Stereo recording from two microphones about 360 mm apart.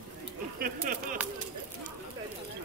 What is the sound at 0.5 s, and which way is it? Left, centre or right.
Speech, right.